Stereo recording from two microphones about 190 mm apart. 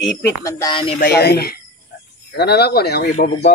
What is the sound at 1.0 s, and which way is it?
Speech, 60° left (ahead or behind).